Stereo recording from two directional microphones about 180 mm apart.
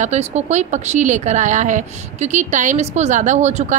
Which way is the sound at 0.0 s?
40° right (ahead or behind).